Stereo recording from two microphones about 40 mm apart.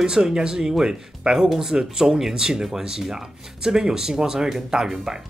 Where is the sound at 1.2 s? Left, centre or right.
Right.